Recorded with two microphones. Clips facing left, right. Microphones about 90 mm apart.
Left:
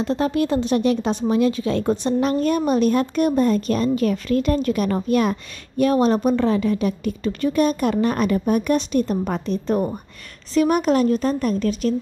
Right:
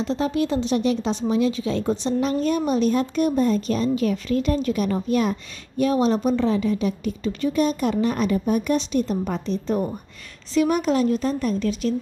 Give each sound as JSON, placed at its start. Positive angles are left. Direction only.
{"t": 0.0, "sound": "a woman's voice", "side_deg": 55}